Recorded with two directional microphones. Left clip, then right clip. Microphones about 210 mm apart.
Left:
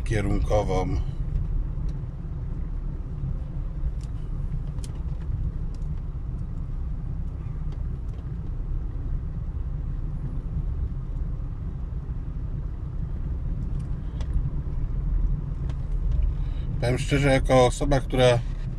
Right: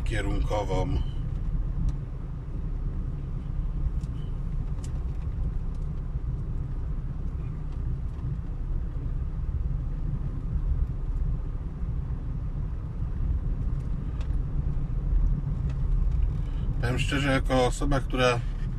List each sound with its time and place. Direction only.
0.1 s speech: 25° left (ahead or behind)
16.8 s speech: 20° left (ahead or behind)